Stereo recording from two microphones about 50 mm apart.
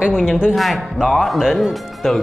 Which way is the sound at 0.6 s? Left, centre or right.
Centre.